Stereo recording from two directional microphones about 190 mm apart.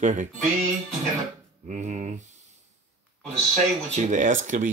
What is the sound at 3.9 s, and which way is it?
Speech, 40° right (ahead or behind).